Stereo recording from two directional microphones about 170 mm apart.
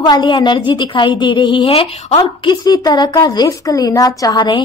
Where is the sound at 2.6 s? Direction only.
25° left (ahead or behind).